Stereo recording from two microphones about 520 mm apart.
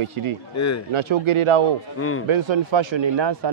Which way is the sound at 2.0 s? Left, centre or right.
Left.